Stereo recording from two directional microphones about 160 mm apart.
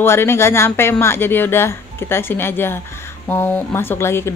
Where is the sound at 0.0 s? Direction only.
15° left (ahead or behind).